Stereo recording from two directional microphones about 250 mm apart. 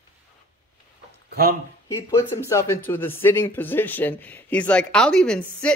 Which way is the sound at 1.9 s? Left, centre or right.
Centre.